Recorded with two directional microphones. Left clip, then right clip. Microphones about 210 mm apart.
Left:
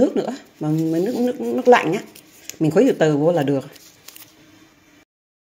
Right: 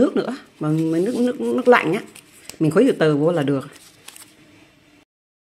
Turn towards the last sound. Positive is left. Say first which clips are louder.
# right 1 dB
turn(degrees=-5)  # may be behind; listen again after turning